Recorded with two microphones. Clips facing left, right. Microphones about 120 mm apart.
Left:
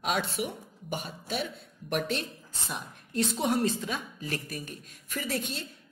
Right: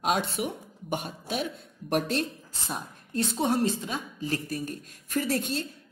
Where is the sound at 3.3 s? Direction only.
30° right (ahead or behind).